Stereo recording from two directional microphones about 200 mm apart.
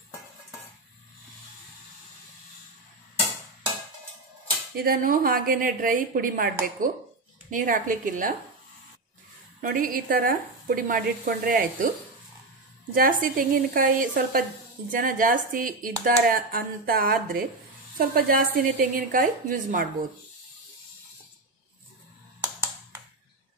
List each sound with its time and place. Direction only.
4.7 s a woman's voice: 45° right (ahead or behind)
9.6 s speech: 45° right (ahead or behind)
12.9 s speech: 45° right (ahead or behind)